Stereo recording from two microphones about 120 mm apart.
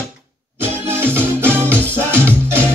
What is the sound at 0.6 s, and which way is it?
Music, 20° right (ahead or behind).